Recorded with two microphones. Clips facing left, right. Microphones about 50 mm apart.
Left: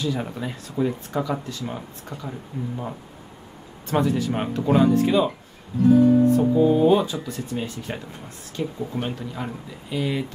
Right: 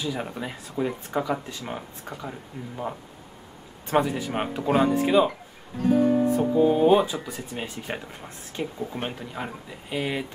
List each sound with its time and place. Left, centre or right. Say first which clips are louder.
0.0 s speech: left 3 dB; centre
2.6 s speech: left 11 dB; right
3.8 s speech: left 1 dB; centre
6.2 s speech: left 3 dB; centre